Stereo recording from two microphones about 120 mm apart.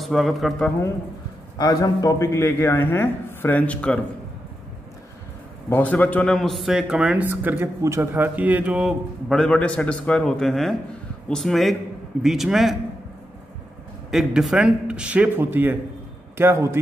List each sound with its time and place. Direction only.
0.0 s speech: centre (ahead or behind)
1.6 s a man's voice: 30° left (ahead or behind); by 4.0 s 10° left (ahead or behind)
5.7 s a man's voice: 15° left (ahead or behind)
6.3 s speech: centre (ahead or behind)
7.2 s speech: 20° right (ahead or behind); by 12.7 s centre (ahead or behind)
14.1 s a man's voice: 5° right (ahead or behind); by 16.8 s 20° right (ahead or behind)